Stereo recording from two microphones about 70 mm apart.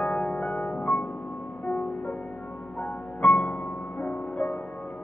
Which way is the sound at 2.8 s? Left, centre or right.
Centre.